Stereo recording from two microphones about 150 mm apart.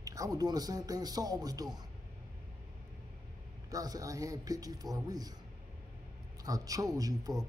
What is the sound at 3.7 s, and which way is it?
Speech, 25° right (ahead or behind).